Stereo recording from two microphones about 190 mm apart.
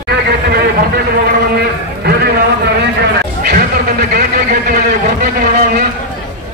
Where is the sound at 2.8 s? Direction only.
60° right (ahead or behind).